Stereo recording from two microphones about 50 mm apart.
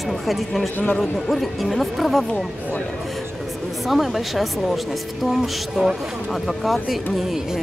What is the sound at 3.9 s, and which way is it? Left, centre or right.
A woman's voice, centre.